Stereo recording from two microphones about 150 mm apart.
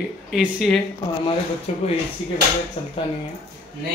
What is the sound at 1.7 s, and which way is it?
Speech, 45° left (ahead or behind).